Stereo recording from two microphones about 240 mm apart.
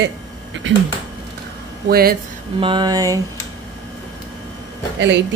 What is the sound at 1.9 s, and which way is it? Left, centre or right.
Speech, right.